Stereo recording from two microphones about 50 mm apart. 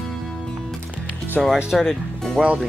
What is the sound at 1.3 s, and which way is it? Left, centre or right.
Speech, centre.